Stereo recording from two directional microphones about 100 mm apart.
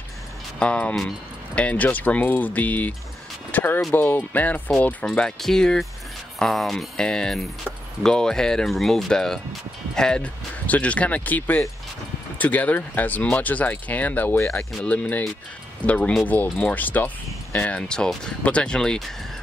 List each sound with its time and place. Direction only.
0.6 s speech: 10° left (ahead or behind)